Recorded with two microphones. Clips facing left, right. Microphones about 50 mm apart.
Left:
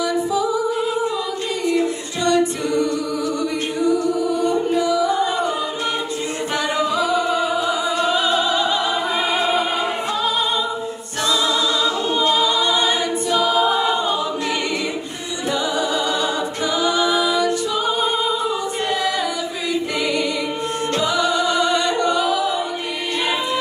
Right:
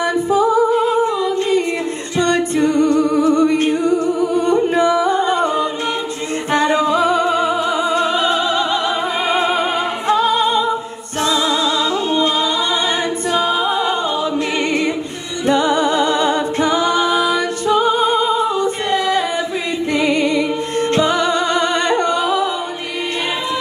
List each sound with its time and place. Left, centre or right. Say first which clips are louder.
0.3 s a capella: right 6 dB; right
6.5 s music: right 7 dB; right
15.4 s music: right 7 dB; right